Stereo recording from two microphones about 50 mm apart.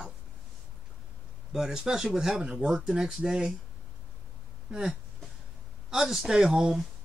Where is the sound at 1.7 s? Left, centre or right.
Centre.